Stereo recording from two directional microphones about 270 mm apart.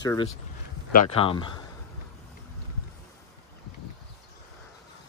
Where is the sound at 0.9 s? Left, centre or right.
Left.